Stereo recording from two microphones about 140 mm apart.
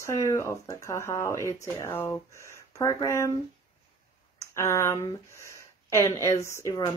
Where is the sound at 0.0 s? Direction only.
20° left (ahead or behind).